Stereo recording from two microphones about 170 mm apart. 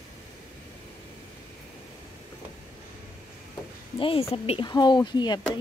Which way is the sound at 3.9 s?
30° left (ahead or behind).